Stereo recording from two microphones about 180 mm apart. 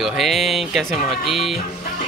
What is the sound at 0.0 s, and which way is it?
Speech, centre (ahead or behind).